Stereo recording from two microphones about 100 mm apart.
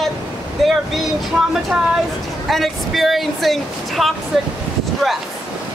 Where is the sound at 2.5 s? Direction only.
Centre (ahead or behind).